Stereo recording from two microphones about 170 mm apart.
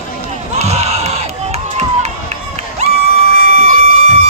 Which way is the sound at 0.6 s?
40° right (ahead or behind).